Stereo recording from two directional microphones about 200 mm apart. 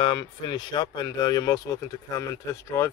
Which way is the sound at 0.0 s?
25° left (ahead or behind).